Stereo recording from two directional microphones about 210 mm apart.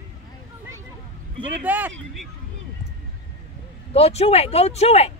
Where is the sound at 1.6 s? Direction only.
10° right (ahead or behind).